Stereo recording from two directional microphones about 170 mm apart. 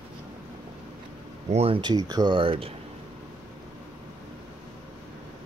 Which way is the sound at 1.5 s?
35° right (ahead or behind).